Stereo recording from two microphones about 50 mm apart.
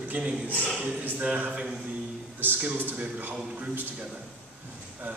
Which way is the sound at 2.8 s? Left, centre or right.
Right.